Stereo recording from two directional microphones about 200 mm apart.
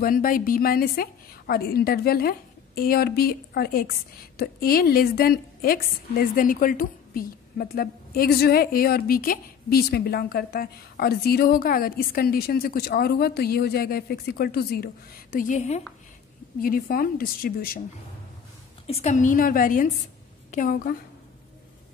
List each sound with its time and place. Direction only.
0.0 s a woman's voice: 45° left (ahead or behind)
15.3 s a woman's voice: 40° left (ahead or behind)
16.6 s a woman's voice: 45° left (ahead or behind)
18.9 s a woman's voice: 35° left (ahead or behind)